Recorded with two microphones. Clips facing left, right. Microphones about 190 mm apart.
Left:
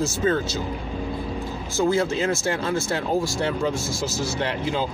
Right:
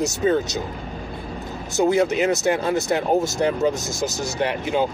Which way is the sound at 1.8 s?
20° right (ahead or behind).